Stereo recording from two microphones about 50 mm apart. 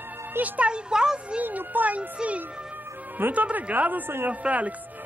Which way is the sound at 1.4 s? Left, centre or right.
Right.